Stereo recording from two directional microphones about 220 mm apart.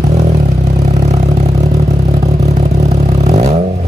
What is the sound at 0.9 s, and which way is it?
Vehicle, 30° right (ahead or behind).